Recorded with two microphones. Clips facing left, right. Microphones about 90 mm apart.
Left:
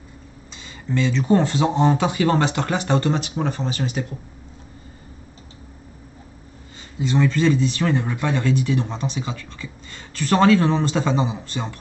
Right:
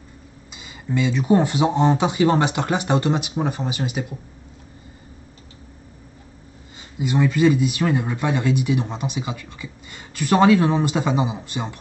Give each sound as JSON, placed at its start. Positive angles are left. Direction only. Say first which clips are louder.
{"t": 0.5, "sound": "speech", "louder": "even", "side_deg": -10}
{"t": 6.8, "sound": "speech", "louder": "even", "side_deg": -15}